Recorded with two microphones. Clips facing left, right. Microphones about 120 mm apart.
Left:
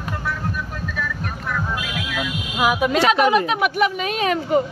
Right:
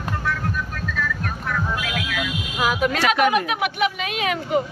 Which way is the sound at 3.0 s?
30° left (ahead or behind).